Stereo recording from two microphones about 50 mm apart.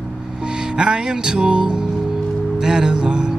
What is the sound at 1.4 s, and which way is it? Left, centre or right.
Music, centre.